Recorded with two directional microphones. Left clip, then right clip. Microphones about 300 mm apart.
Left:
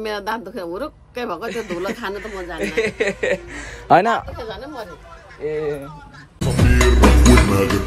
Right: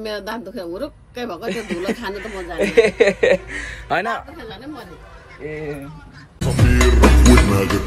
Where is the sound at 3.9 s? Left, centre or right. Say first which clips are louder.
Left 7 dB; left.